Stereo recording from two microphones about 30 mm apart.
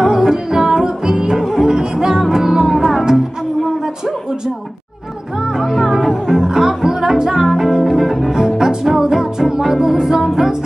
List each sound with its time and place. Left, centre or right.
0.1 s music: centre
5.4 s music: centre
7.8 s double bass: centre
8.3 s music: centre